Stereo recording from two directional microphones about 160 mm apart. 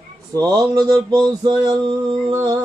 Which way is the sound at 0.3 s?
20° right (ahead or behind).